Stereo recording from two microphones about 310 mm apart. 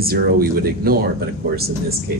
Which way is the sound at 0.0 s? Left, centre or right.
Right.